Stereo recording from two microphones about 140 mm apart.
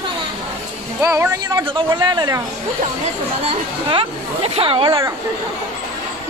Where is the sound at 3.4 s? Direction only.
40° right (ahead or behind).